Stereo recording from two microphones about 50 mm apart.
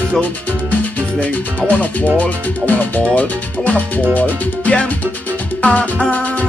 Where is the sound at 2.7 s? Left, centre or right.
Left.